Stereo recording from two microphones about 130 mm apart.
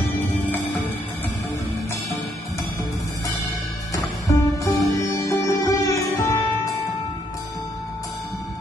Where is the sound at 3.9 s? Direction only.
25° left (ahead or behind).